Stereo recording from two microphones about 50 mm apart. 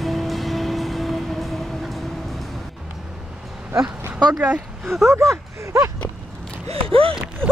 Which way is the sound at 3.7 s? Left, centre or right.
Right.